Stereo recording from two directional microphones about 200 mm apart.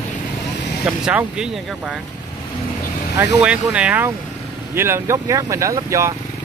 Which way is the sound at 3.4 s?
5° right (ahead or behind).